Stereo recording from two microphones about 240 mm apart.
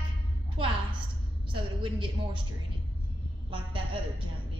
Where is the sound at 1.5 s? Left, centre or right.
Right.